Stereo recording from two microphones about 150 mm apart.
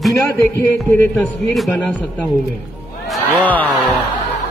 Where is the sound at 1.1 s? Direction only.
Centre (ahead or behind).